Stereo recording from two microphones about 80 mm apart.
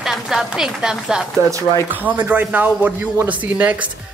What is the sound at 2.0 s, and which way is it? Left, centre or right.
Speech, right.